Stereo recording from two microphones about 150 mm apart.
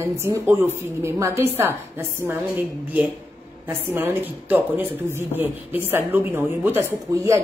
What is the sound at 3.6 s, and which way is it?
A woman's voice, 15° right (ahead or behind).